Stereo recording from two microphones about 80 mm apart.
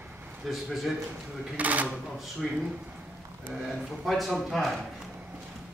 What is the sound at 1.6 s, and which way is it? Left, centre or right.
Speech, centre.